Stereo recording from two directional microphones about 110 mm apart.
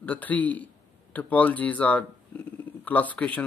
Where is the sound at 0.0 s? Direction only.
15° left (ahead or behind).